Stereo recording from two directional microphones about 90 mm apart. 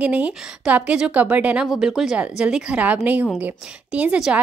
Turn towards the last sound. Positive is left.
turn(degrees=-10)  # may be behind; listen again after turning